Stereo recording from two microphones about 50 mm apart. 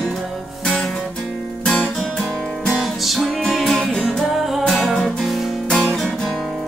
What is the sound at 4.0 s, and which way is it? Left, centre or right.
Music, centre.